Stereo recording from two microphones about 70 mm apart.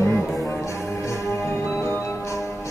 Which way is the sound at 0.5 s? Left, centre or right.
Left.